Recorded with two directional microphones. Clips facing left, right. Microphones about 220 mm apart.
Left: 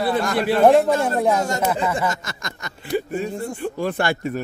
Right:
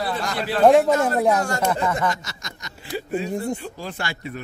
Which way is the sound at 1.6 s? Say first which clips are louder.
Left 1 dB; 10° left (ahead or behind).